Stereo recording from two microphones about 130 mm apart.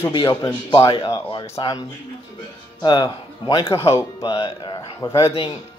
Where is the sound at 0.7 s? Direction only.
40° left (ahead or behind).